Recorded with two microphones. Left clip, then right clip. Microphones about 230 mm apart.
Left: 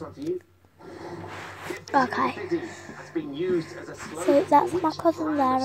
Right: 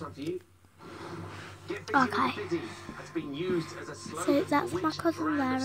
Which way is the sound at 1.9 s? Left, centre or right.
Centre.